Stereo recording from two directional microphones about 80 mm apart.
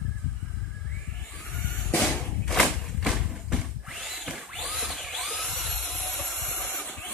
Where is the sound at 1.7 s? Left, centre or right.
Centre.